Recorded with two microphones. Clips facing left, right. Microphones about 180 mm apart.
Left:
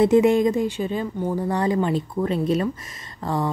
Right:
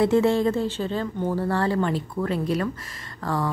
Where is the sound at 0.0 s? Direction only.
20° left (ahead or behind).